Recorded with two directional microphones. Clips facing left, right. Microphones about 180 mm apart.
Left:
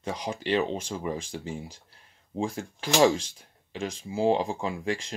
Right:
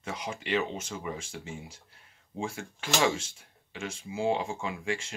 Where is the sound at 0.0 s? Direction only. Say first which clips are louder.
Left 5 dB; 30° left (ahead or behind).